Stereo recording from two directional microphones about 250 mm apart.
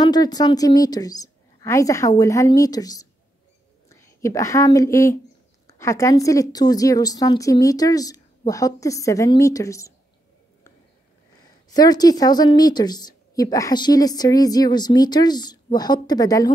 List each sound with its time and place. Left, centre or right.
0.0 s a woman's voice: centre
11.7 s a woman's voice: centre